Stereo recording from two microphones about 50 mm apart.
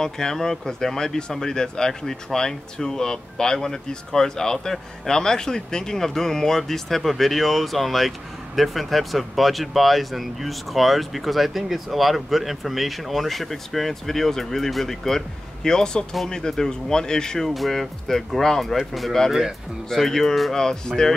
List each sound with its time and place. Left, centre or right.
0.0 s speech: centre